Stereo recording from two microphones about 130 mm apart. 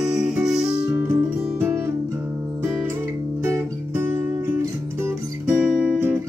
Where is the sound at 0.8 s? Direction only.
20° right (ahead or behind).